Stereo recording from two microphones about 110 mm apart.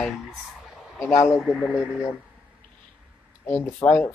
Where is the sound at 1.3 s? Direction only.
Centre (ahead or behind).